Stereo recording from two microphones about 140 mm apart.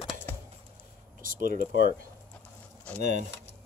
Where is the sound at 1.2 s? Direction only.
75° right (ahead or behind).